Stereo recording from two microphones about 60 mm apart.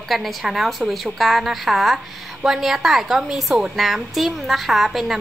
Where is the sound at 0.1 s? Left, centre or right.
Centre.